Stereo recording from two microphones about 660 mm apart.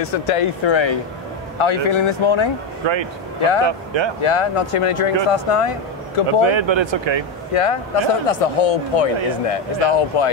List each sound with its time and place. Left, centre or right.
0.0 s speech: left
2.8 s speech: right
4.2 s speech: left
6.4 s speech: right
7.5 s speech: left